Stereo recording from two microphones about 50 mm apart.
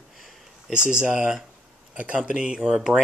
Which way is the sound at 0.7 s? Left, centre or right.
Centre.